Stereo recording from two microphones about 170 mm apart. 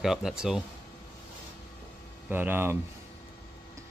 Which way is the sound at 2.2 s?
10° right (ahead or behind).